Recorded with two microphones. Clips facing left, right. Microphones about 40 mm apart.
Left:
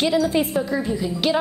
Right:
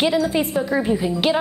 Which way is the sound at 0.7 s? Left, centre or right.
Right.